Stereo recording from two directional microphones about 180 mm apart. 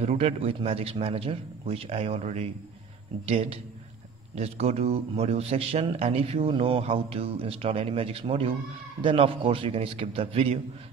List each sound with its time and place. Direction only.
0.0 s a man's voice: 35° right (ahead or behind)